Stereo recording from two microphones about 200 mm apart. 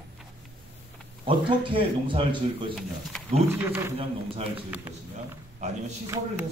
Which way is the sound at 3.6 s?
10° right (ahead or behind).